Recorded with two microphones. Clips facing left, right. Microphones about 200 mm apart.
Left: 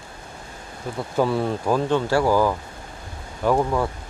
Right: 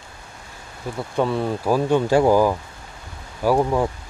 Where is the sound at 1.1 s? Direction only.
Centre (ahead or behind); by 3.8 s 15° right (ahead or behind).